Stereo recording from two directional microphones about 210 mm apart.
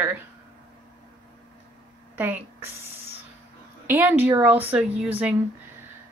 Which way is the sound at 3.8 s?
10° right (ahead or behind).